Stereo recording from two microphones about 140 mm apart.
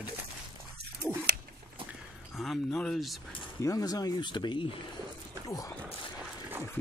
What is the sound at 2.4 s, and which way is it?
Speech, centre (ahead or behind).